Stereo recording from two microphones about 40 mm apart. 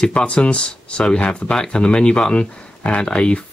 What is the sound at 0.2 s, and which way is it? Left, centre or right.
Speech, left.